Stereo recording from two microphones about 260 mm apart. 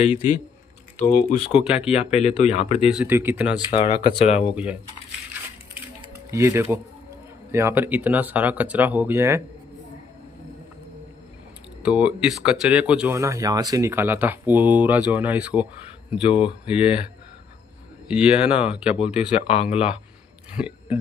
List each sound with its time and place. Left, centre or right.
0.0 s speech: left
1.6 s speech: centre
2.0 s speech: left
2.8 s speech: centre
3.7 s speech: left
4.5 s speech: centre
5.9 s music: centre
7.5 s speech: centre
11.8 s speech: centre
16.2 s speech: left
16.6 s speech: centre
18.0 s speech: centre
19.1 s speech: left
20.5 s hiccup: centre